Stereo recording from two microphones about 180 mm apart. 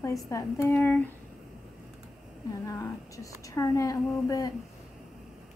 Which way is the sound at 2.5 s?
15° left (ahead or behind).